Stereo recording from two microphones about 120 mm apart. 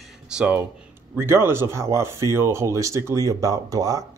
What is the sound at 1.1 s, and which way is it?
Speech, 20° right (ahead or behind).